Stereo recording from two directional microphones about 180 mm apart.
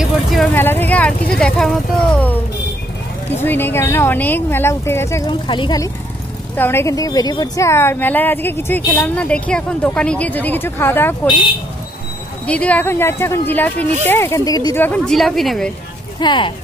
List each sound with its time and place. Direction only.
0.0 s vehicle: centre (ahead or behind)
1.4 s speech: 5° left (ahead or behind)
5.3 s speech: 25° left (ahead or behind)
6.5 s speech: 10° left (ahead or behind)
12.4 s speech: 5° left (ahead or behind)
14.9 s speech: centre (ahead or behind)
16.2 s speech: 25° left (ahead or behind)